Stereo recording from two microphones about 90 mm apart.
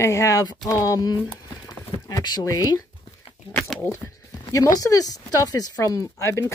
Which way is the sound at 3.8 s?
35° left (ahead or behind).